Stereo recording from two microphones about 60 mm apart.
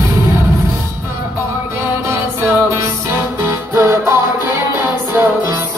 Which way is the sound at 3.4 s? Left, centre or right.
Right.